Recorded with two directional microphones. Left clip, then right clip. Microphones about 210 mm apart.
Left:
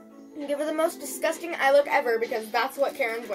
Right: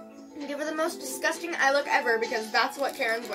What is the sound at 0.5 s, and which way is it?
A woman's voice, 20° right (ahead or behind).